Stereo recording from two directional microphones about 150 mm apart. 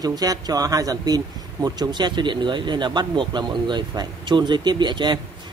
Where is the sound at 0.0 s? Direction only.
25° right (ahead or behind).